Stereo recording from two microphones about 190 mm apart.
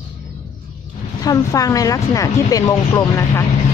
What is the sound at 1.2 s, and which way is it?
Speech, 20° left (ahead or behind).